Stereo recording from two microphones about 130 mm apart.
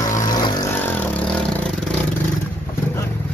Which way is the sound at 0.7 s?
15° left (ahead or behind).